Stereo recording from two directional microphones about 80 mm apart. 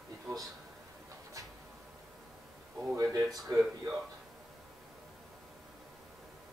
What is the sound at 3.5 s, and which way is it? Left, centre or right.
Speech, right.